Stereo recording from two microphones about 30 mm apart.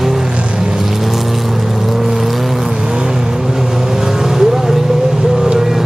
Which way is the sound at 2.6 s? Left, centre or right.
Right.